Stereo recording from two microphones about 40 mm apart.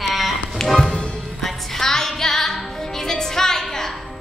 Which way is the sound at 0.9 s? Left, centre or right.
Left.